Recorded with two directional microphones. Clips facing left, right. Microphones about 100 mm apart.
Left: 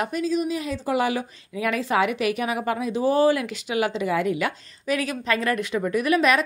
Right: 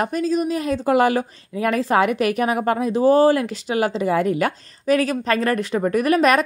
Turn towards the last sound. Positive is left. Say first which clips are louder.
# right 4 dB
turn(degrees=-45)  # may be behind; listen again after turning